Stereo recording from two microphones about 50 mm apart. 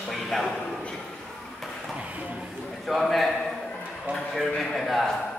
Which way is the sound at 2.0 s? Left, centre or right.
Right.